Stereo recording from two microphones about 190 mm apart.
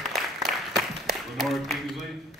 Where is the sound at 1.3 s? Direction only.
Centre (ahead or behind).